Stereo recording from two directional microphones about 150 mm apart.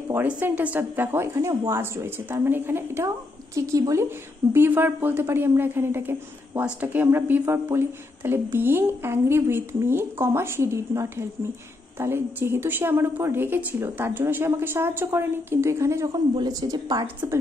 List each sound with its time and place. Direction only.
0.1 s a woman's voice: 10° right (ahead or behind)